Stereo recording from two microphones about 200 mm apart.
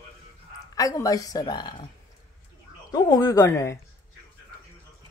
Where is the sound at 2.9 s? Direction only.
20° left (ahead or behind).